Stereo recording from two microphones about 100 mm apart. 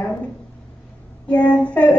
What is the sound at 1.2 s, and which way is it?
Speech, 10° left (ahead or behind).